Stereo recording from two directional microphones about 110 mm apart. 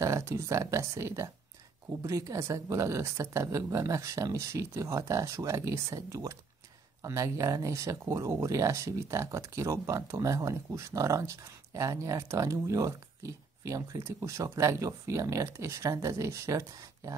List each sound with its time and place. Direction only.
0.0 s speech: 25° right (ahead or behind)